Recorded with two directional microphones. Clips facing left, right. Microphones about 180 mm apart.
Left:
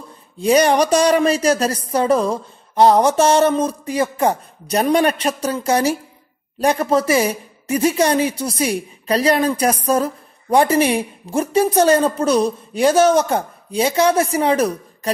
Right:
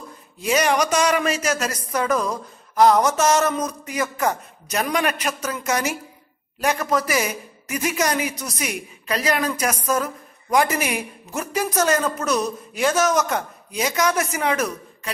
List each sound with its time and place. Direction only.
0.4 s speech: 35° left (ahead or behind)